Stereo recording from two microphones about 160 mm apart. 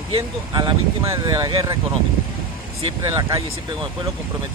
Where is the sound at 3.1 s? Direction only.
20° right (ahead or behind).